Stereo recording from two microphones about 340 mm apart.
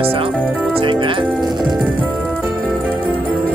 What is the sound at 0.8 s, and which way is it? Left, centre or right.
Speech, centre.